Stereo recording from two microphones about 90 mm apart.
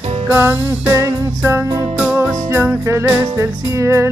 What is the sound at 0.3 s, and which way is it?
Music, 20° right (ahead or behind).